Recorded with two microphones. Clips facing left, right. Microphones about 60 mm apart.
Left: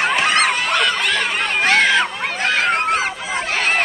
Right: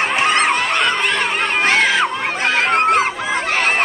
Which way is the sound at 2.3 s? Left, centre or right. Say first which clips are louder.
Even; right.